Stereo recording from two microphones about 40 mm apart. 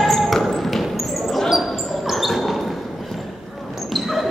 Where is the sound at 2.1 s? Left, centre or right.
Centre.